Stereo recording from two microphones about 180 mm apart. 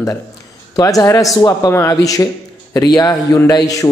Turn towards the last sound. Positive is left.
turn(degrees=20)  # may be behind; listen again after turning